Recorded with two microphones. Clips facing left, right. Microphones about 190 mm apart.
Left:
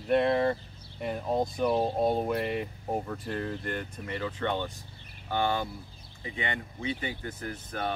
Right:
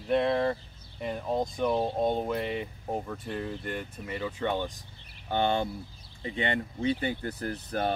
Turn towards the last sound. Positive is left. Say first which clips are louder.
# right 4 dB
turn(degrees=-35)  # may be behind; listen again after turning